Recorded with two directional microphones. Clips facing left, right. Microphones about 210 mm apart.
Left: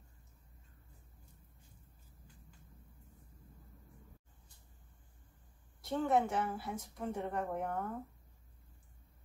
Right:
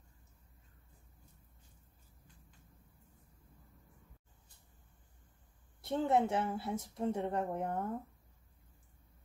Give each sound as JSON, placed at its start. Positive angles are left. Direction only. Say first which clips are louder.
{"t": 5.9, "sound": "speech", "louder": "right 1 dB", "side_deg": -25}